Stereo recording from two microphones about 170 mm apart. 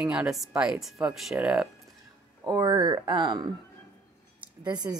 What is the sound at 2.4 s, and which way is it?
Speech, 25° right (ahead or behind).